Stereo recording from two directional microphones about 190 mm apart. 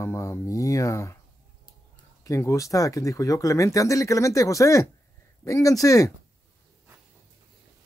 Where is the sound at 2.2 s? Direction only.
15° left (ahead or behind).